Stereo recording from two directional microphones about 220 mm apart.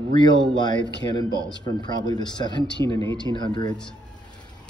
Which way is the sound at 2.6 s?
50° left (ahead or behind).